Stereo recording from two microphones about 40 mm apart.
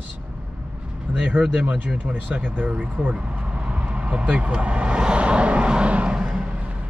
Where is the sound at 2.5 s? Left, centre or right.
Right.